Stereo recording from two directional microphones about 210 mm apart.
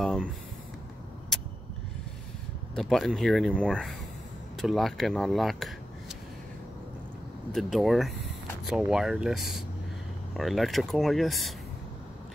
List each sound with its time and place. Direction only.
0.0 s a sound: centre (ahead or behind)
2.7 s speech: centre (ahead or behind)
7.5 s speech: centre (ahead or behind)